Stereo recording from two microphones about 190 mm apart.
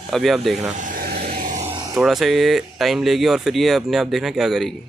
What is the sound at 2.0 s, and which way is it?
Speech, centre (ahead or behind).